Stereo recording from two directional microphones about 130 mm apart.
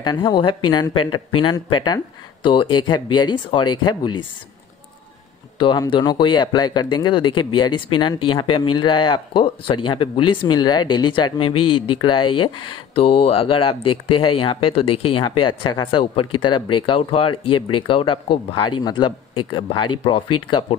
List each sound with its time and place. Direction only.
0.0 s speech: 35° left (ahead or behind)
5.6 s speech: 40° left (ahead or behind)